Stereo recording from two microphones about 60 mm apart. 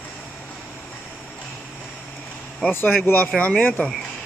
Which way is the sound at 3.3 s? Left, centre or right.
Centre.